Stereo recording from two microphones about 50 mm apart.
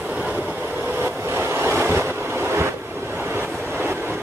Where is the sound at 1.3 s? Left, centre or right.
Right.